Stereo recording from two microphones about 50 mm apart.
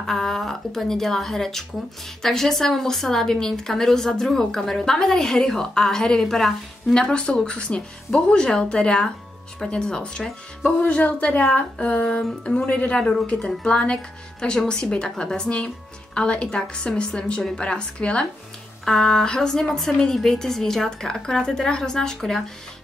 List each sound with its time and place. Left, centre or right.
0.0 s a woman's voice: centre
10.8 s a woman's voice: left
18.9 s a woman's voice: centre